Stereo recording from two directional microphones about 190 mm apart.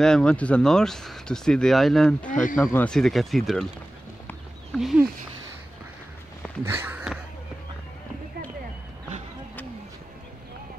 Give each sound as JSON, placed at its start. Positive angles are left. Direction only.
{"t": 0.0, "sound": "speech", "side_deg": 5}
{"t": 2.2, "sound": "speech", "side_deg": 45}
{"t": 2.7, "sound": "speech", "side_deg": 5}
{"t": 4.7, "sound": "speech", "side_deg": 0}
{"t": 6.6, "sound": "speech", "side_deg": -10}